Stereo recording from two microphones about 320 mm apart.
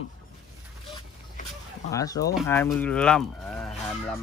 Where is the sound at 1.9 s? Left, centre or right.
Centre.